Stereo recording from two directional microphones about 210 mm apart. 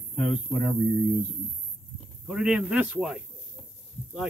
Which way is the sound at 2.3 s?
5° right (ahead or behind).